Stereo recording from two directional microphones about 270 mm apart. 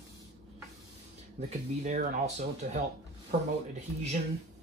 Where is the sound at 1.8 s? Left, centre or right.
Right.